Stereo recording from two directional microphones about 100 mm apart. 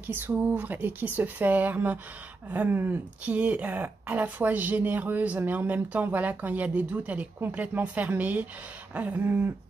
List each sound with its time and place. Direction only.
0.0 s speech: 20° right (ahead or behind)